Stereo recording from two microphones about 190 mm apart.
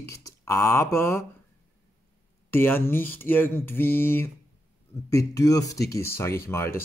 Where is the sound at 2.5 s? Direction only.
10° left (ahead or behind).